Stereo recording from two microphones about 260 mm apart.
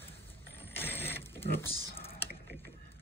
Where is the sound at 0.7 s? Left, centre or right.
Centre.